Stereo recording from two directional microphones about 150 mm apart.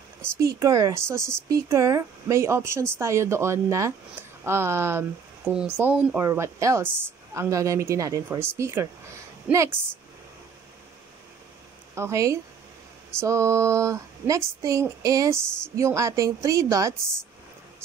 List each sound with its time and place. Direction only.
0.6 s speech: 25° right (ahead or behind)
11.9 s speech: 20° right (ahead or behind)